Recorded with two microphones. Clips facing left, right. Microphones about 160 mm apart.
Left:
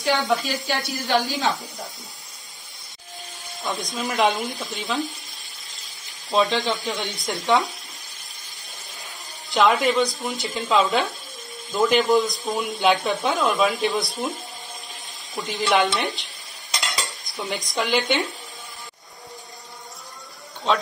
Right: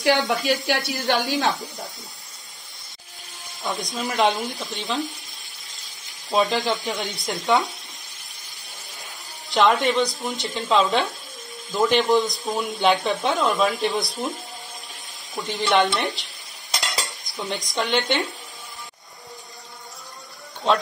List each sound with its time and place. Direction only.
0.0 s speech: 75° right (ahead or behind)
3.6 s speech: centre (ahead or behind)
6.3 s speech: centre (ahead or behind)
9.5 s speech: centre (ahead or behind)
17.0 s cutlery: centre (ahead or behind)